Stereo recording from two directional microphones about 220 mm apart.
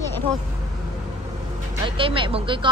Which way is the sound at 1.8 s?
25° right (ahead or behind).